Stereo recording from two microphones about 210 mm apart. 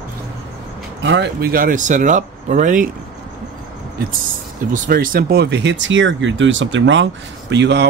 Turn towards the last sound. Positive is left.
turn(degrees=-55)  # may be behind; listen again after turning